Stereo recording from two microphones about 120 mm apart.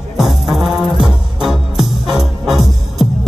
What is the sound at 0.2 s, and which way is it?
Music, centre (ahead or behind).